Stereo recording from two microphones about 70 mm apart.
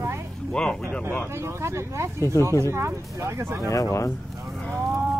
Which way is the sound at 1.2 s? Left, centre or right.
Right.